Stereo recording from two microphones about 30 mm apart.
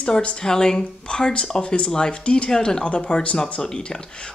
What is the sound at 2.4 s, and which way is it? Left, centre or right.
Speech, left.